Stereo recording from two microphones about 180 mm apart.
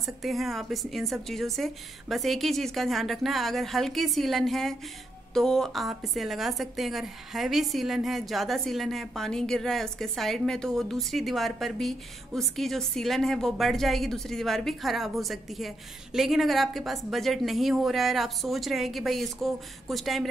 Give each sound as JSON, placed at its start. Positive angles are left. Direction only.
{"t": 0.0, "sound": "a woman's voice", "side_deg": 0}